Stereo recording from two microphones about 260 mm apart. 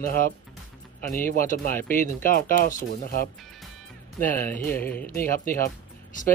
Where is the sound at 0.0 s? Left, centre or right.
Left.